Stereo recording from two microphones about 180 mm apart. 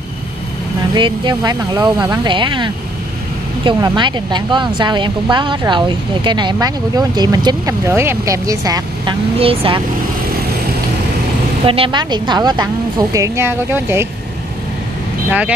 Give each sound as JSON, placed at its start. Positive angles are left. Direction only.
{"t": 0.9, "sound": "speech", "side_deg": -25}
{"t": 9.4, "sound": "speech", "side_deg": -30}
{"t": 11.6, "sound": "a woman's voice", "side_deg": -30}